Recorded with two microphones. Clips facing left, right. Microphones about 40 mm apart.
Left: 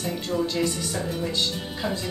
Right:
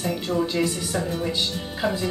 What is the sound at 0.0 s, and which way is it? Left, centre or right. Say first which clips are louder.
Speech: right 2 dB; centre.